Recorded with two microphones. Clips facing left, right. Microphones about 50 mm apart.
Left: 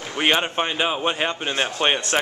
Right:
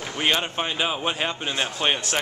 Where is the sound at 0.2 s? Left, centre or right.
Left.